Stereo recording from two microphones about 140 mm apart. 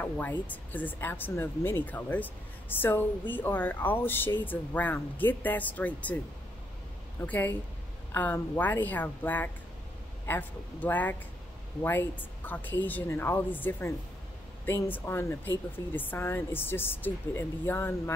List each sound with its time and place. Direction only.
0.0 s speech: 10° left (ahead or behind)
7.2 s speech: 15° left (ahead or behind)